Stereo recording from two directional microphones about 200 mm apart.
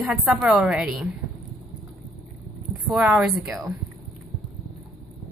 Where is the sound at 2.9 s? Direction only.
5° right (ahead or behind).